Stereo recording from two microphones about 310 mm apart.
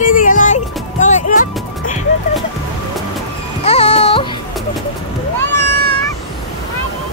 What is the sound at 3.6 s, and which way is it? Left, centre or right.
Music, centre.